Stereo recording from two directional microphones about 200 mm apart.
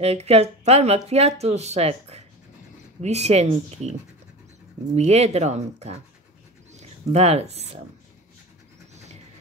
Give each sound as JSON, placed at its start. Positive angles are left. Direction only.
{"t": 0.0, "sound": "speech", "side_deg": -30}
{"t": 4.9, "sound": "speech", "side_deg": -30}
{"t": 8.9, "sound": "a sound", "side_deg": -35}